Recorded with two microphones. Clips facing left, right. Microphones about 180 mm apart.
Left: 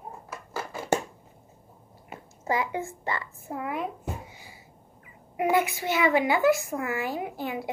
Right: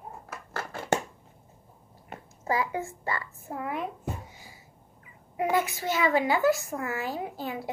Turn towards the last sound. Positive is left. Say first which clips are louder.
# left 2 dB
turn(degrees=15)  # may be behind; listen again after turning